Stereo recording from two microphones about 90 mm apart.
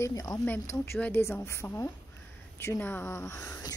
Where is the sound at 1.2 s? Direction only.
30° left (ahead or behind).